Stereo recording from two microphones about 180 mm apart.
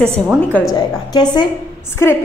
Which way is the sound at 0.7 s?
25° left (ahead or behind).